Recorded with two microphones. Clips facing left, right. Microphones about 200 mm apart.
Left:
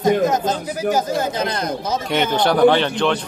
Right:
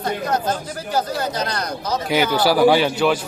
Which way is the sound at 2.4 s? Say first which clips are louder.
Left 1 dB; 5° right (ahead or behind).